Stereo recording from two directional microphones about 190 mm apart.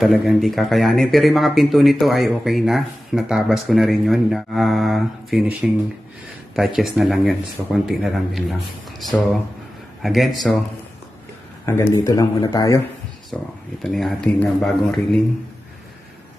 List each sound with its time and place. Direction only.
0.0 s speech: centre (ahead or behind)
11.6 s a man's voice: 15° left (ahead or behind)
13.3 s speech: 5° left (ahead or behind)